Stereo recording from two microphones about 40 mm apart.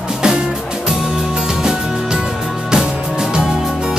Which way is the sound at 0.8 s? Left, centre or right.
Centre.